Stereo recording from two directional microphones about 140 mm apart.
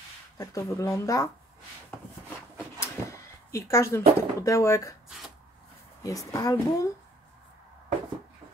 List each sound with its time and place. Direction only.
0.4 s speech: 25° left (ahead or behind)
2.5 s drawer open or close: 20° left (ahead or behind)
6.0 s speech: 25° left (ahead or behind)